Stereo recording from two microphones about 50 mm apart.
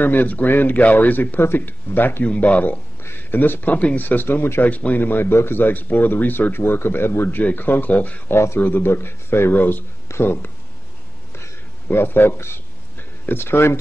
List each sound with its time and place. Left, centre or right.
0.0 s speech: left
2.2 s speech: left
3.2 s speech: left
4.6 s speech: left
8.3 s speech: left
8.5 s speech: left
11.9 s speech: left